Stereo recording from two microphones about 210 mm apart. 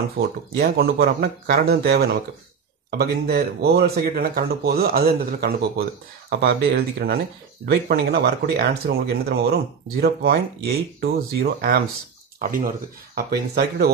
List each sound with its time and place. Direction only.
0.2 s speech: 45° right (ahead or behind)